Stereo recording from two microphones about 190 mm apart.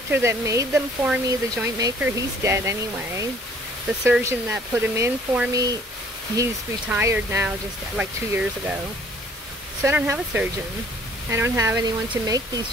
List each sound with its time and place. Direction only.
0.1 s speech: 15° right (ahead or behind)
6.9 s speech: 15° right (ahead or behind)
9.8 s speech: 10° right (ahead or behind)